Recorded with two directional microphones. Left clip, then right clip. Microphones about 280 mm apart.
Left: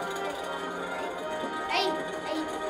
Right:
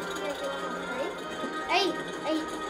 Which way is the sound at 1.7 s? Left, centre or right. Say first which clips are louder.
Right 2 dB; centre.